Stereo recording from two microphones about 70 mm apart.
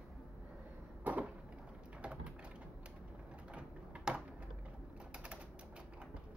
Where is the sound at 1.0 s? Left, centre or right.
Right.